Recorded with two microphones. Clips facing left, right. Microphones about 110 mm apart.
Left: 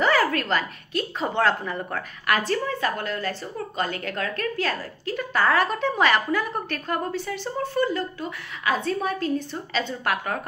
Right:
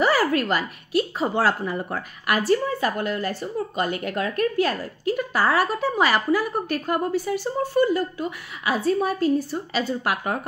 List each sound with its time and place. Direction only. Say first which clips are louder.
0.0 s a woman's voice: right 1 dB; 10° right (ahead or behind)